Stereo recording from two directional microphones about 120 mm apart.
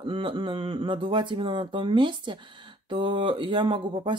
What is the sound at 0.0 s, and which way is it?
Speech, 45° right (ahead or behind).